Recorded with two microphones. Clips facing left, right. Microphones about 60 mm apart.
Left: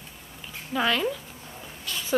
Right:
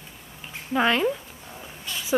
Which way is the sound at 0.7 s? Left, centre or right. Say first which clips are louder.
Right 3 dB; right.